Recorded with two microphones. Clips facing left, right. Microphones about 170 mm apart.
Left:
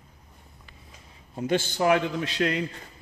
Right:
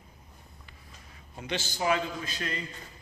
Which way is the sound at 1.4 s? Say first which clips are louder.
Left 8 dB; 50° left (ahead or behind).